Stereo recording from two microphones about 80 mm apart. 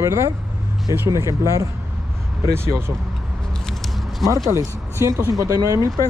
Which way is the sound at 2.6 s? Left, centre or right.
Right.